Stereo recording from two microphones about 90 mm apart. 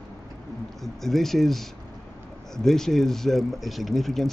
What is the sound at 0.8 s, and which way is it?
Speech, 5° left (ahead or behind).